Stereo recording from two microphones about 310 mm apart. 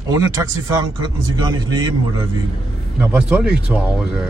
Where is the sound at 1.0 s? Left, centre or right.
Centre.